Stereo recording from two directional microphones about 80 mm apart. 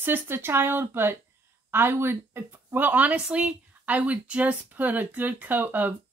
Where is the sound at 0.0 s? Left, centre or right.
Right.